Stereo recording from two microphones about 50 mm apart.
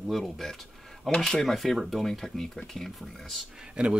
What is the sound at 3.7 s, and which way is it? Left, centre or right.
Speech, right.